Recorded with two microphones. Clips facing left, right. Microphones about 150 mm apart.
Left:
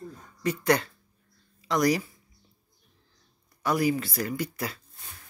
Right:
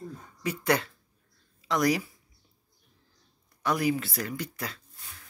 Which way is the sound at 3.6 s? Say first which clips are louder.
Left 2 dB; centre (ahead or behind).